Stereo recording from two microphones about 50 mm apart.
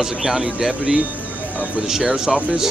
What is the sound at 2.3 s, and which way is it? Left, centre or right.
Speech, centre.